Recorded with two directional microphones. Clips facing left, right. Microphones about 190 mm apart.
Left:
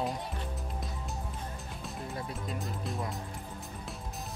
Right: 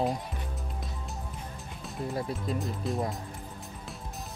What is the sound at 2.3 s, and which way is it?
Speech, centre (ahead or behind).